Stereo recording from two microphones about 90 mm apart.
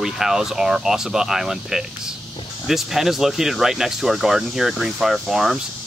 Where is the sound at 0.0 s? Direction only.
5° right (ahead or behind).